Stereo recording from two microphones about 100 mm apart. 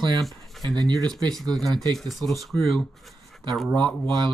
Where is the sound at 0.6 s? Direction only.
40° right (ahead or behind).